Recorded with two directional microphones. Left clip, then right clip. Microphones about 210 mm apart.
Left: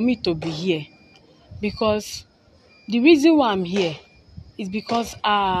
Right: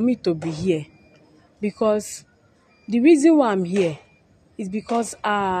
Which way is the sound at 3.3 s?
20° right (ahead or behind).